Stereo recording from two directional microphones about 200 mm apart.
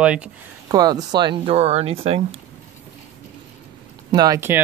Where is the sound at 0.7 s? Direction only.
20° right (ahead or behind).